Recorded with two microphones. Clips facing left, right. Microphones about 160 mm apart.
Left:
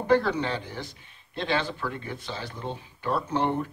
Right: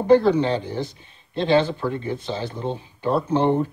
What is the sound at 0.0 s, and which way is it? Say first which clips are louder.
Speech: right 7 dB; 25° right (ahead or behind).